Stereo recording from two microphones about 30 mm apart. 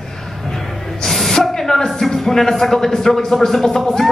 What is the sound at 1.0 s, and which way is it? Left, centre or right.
Spray, centre.